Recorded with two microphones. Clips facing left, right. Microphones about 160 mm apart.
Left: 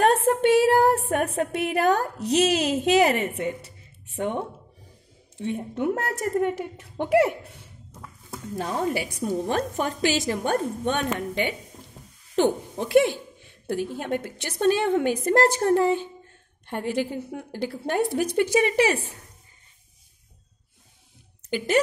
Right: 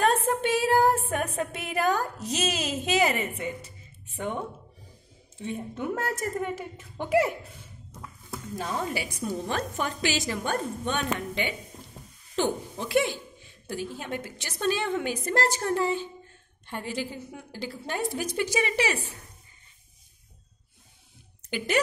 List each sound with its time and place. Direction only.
0.0 s a woman's voice: 60° left (ahead or behind)
5.4 s a woman's voice: 65° left (ahead or behind)
8.6 s a woman's voice: 45° left (ahead or behind)
21.5 s a woman's voice: 40° left (ahead or behind)